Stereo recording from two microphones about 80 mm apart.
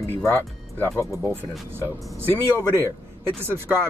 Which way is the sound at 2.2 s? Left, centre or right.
Right.